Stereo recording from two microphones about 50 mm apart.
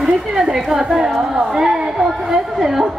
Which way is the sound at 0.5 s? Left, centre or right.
Centre.